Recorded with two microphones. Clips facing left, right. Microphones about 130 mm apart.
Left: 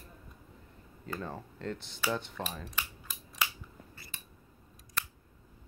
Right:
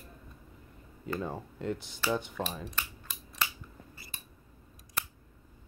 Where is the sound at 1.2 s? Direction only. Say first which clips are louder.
Right 3 dB; 10° right (ahead or behind).